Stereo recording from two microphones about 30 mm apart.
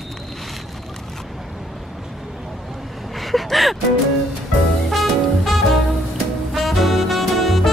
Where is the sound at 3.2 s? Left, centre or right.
Centre.